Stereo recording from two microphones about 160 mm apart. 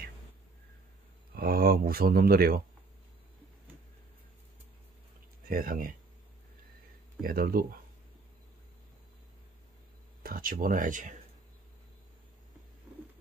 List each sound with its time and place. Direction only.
1.3 s speech: 70° right (ahead or behind)
5.5 s speech: 65° right (ahead or behind)
7.2 s speech: 65° right (ahead or behind)
10.2 s speech: 60° right (ahead or behind)